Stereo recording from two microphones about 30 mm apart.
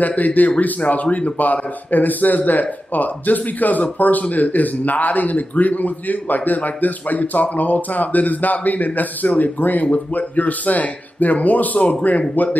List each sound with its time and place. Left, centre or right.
0.0 s speech: left
1.4 s speech: left
10.1 s speech: left